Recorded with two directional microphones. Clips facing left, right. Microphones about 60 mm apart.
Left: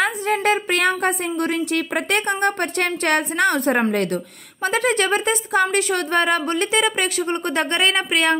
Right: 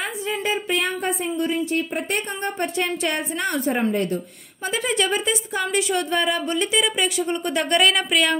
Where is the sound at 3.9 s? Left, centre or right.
Left.